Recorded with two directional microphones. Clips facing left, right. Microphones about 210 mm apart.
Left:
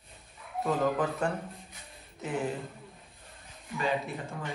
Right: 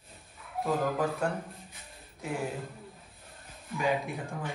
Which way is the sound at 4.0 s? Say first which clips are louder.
Right 1 dB; centre (ahead or behind).